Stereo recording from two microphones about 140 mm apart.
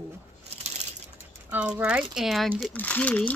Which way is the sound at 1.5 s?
10° right (ahead or behind).